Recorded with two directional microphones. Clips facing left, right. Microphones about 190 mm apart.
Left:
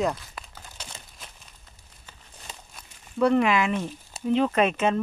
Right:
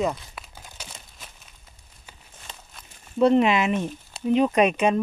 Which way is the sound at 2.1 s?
10° right (ahead or behind).